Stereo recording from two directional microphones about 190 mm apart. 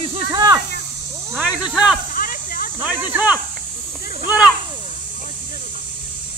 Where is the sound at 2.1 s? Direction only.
50° left (ahead or behind).